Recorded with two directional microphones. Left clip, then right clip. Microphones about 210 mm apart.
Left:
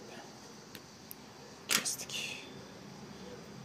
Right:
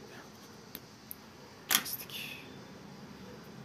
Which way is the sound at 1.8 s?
15° left (ahead or behind).